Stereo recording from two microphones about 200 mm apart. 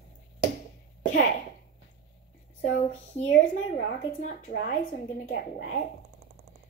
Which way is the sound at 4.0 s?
35° left (ahead or behind).